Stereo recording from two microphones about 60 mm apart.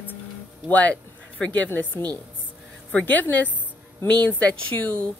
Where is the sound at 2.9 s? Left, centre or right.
Left.